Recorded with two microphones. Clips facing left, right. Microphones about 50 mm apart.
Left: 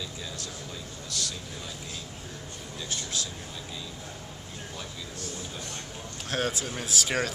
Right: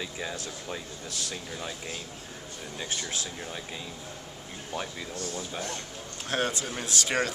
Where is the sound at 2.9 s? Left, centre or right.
Right.